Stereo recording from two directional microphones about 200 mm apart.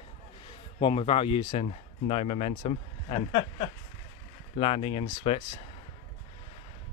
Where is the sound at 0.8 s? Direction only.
25° left (ahead or behind).